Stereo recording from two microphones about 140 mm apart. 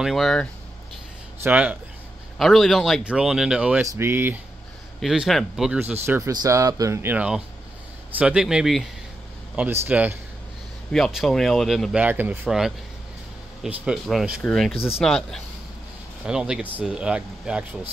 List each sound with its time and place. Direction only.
0.0 s speech: centre (ahead or behind)
1.4 s speech: 10° right (ahead or behind)
2.3 s speech: centre (ahead or behind)
3.8 s speech: 20° right (ahead or behind)
5.0 s speech: 5° right (ahead or behind)
10.9 s speech: centre (ahead or behind)